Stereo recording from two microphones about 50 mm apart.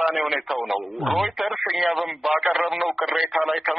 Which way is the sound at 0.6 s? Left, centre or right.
Centre.